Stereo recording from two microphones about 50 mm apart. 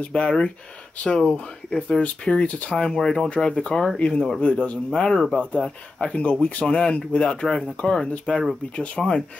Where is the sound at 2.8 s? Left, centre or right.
Centre.